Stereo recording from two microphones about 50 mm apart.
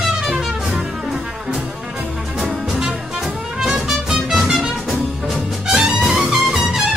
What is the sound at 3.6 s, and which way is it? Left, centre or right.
Music, centre.